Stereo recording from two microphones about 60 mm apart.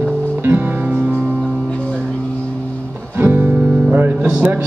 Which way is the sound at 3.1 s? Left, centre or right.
Right.